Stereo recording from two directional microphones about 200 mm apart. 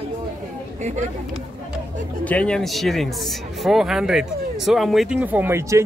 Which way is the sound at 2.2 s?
5° left (ahead or behind).